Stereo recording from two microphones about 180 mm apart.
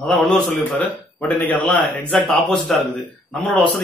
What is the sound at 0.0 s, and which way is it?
A man's voice, centre (ahead or behind).